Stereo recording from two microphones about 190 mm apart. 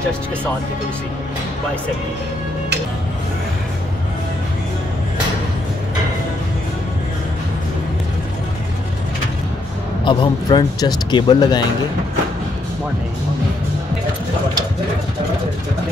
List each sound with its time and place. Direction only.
10.0 s speech: 25° left (ahead or behind)